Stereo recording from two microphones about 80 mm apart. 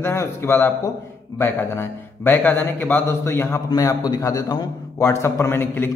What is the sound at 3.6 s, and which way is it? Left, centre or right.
A man's voice, left.